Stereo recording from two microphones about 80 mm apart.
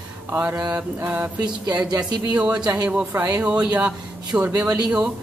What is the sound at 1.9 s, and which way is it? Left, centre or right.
Speech, right.